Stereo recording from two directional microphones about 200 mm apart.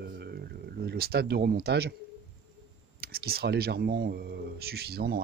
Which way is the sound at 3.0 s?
50° right (ahead or behind).